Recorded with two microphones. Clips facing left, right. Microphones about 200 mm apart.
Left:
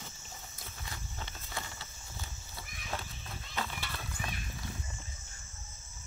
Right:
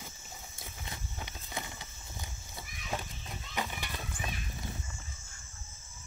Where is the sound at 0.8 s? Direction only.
15° right (ahead or behind).